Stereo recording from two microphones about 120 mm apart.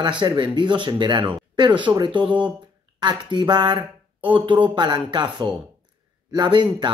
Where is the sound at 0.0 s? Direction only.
40° right (ahead or behind).